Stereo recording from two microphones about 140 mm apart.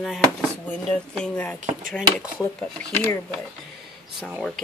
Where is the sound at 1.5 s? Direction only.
65° right (ahead or behind).